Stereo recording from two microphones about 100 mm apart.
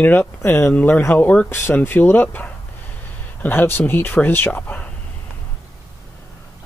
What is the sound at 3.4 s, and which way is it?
Speech, 20° left (ahead or behind).